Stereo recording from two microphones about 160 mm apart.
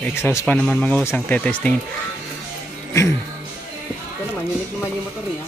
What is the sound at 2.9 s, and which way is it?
Music, 15° left (ahead or behind).